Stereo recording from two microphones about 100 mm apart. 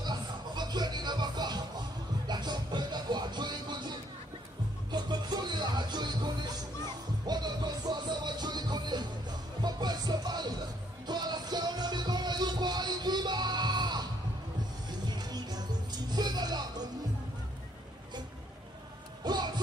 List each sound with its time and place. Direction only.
0.0 s music: 45° right (ahead or behind)
4.9 s music: 45° right (ahead or behind)
15.0 s music: 45° right (ahead or behind)
19.2 s music: 45° right (ahead or behind)